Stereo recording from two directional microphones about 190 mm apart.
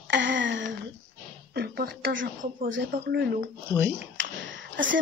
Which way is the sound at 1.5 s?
55° right (ahead or behind).